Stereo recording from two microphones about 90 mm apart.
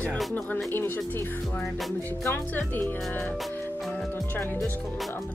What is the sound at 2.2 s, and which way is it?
Speech, 25° left (ahead or behind).